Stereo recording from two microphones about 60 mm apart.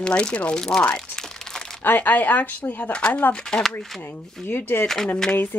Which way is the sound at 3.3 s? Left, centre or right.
Centre.